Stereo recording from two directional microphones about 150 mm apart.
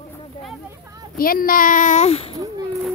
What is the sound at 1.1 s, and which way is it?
A child's voice, 75° left (ahead or behind).